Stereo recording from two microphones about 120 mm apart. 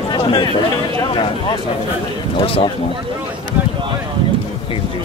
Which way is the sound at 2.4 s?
50° left (ahead or behind).